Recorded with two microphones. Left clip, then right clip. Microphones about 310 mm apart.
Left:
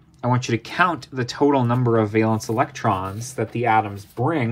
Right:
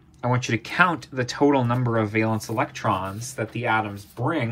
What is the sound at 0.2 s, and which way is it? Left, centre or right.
Speech, centre.